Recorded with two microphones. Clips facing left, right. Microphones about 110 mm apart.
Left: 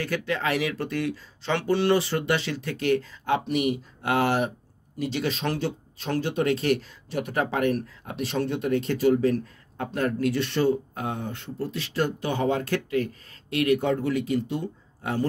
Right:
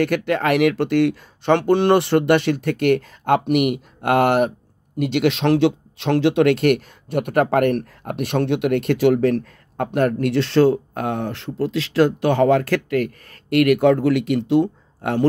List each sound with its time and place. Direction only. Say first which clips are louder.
0.0 s speech: right 8 dB; 65° right (ahead or behind)